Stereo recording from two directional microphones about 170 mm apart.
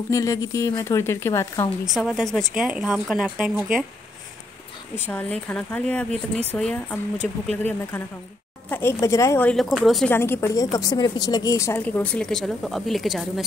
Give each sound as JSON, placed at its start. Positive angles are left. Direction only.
{"t": 0.1, "sound": "a woman's voice", "side_deg": 20}
{"t": 2.0, "sound": "speech", "side_deg": 0}
{"t": 4.9, "sound": "a woman's voice", "side_deg": 10}
{"t": 10.1, "sound": "a woman's voice", "side_deg": 15}